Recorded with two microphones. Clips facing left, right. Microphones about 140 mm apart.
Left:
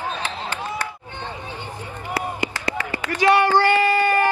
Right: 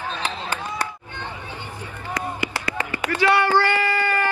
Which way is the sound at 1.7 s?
15° left (ahead or behind).